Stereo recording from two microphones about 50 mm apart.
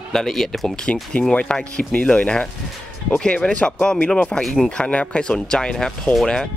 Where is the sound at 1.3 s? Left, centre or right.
Left.